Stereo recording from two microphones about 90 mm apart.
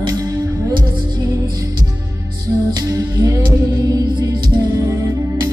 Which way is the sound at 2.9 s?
35° right (ahead or behind).